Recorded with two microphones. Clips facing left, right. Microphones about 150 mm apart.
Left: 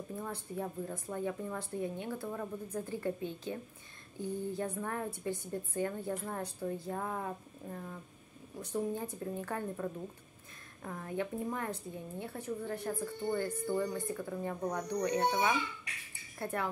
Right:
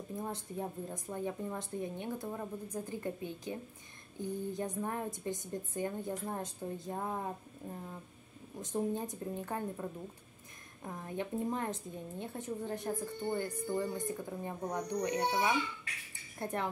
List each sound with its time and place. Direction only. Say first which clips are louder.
0.2 s a woman's voice: even; 20° right (ahead or behind)